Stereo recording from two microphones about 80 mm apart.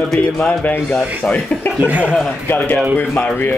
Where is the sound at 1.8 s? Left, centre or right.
Centre.